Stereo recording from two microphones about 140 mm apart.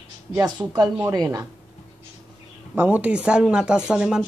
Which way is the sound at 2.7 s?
15° right (ahead or behind).